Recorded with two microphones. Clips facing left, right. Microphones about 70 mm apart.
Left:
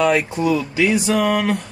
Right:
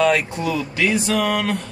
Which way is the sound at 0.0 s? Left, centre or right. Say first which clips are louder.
Left 1 dB; centre.